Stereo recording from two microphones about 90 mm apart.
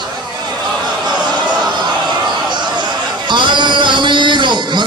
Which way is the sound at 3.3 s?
60° right (ahead or behind).